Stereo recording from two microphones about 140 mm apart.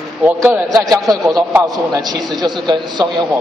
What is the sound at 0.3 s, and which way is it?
A man's voice, 15° right (ahead or behind).